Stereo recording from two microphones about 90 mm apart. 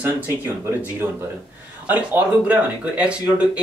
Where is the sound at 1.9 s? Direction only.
15° right (ahead or behind).